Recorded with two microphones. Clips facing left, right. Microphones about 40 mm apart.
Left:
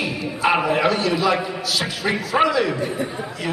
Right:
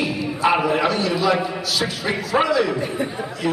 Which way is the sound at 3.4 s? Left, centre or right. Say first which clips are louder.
Right 4 dB; centre.